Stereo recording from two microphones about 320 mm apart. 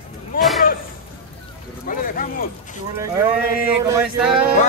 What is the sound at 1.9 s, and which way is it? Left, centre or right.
Speech, left.